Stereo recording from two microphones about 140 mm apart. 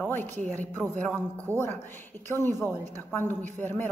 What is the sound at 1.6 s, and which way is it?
Speech, 15° left (ahead or behind).